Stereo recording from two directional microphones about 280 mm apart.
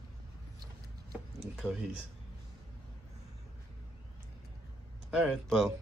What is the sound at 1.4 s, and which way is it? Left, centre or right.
Speech, centre.